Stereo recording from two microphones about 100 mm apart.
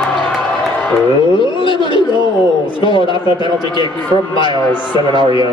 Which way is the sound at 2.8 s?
55° left (ahead or behind).